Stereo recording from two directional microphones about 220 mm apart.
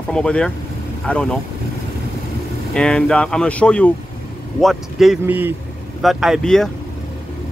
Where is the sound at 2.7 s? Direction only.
5° left (ahead or behind).